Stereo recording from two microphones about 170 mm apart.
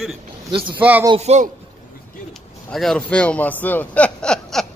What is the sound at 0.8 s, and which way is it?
Speech, 10° right (ahead or behind).